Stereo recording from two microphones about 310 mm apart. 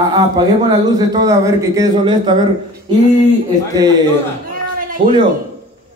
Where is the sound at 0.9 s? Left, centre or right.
Centre.